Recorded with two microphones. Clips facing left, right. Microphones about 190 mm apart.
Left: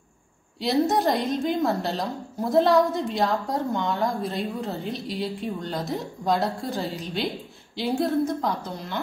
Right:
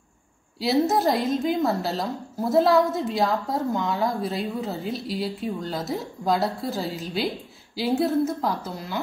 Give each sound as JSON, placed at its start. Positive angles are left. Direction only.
{"t": 0.6, "sound": "a woman's voice", "side_deg": 0}